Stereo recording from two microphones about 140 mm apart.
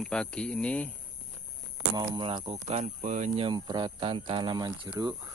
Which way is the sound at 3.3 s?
35° right (ahead or behind).